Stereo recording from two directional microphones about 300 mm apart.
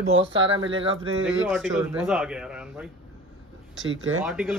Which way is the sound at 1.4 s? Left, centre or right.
Centre.